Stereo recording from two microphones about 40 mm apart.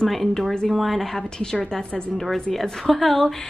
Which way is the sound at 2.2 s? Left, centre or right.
Centre.